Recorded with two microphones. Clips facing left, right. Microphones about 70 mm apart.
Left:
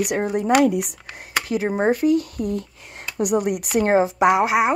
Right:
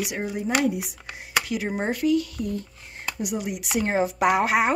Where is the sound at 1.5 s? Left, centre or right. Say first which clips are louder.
Left 7 dB; left.